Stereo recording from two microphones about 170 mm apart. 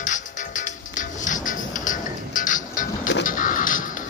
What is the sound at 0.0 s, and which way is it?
Music, 45° left (ahead or behind).